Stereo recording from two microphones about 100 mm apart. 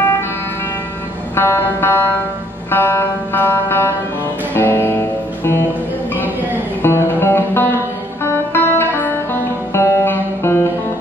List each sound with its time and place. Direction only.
1.3 s music: 20° left (ahead or behind)
6.8 s music: 25° left (ahead or behind)